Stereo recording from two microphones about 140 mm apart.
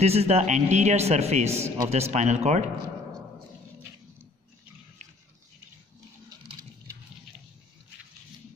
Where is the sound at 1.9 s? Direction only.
50° right (ahead or behind).